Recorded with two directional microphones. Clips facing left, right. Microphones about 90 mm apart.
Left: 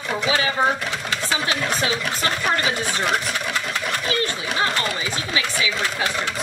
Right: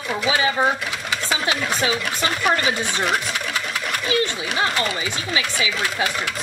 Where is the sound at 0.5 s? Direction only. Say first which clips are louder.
Even; 10° right (ahead or behind).